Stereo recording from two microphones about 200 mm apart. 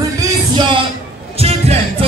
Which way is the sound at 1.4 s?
30° right (ahead or behind).